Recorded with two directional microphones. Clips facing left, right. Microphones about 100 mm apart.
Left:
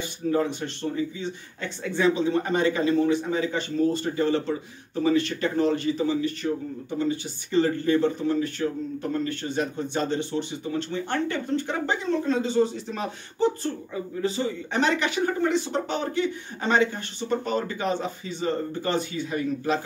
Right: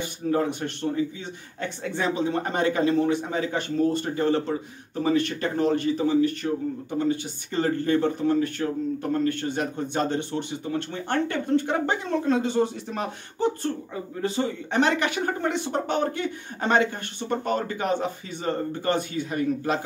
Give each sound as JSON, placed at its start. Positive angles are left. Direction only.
{"t": 0.3, "sound": "a man's voice", "side_deg": -55}